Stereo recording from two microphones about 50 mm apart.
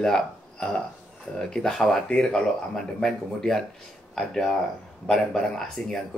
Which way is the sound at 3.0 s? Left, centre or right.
Centre.